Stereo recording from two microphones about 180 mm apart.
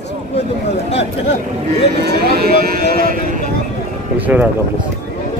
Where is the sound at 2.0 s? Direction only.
60° right (ahead or behind).